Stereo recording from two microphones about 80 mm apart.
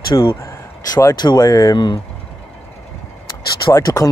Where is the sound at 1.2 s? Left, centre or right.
Left.